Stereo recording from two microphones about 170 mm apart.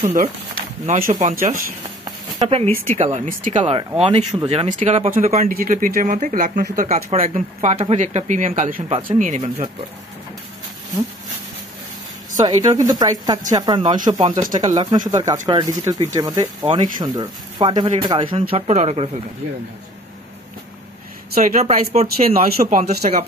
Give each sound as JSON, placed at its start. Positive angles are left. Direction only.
{"t": 0.1, "sound": "speech", "side_deg": -50}
{"t": 2.0, "sound": "a sound", "side_deg": -30}
{"t": 3.0, "sound": "speech", "side_deg": -40}
{"t": 5.5, "sound": "speech", "side_deg": -55}
{"t": 12.4, "sound": "speech", "side_deg": -20}
{"t": 18.5, "sound": "speech", "side_deg": -40}
{"t": 21.5, "sound": "speech", "side_deg": -45}